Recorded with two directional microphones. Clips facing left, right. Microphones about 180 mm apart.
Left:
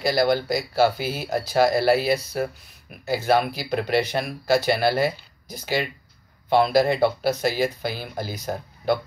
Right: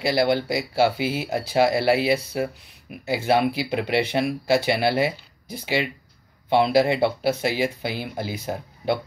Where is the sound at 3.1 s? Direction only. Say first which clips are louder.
Even; 20° right (ahead or behind).